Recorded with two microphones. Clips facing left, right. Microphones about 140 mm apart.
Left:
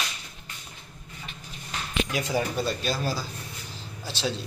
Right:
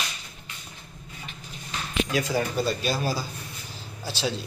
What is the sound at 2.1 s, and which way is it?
Speech, 15° left (ahead or behind).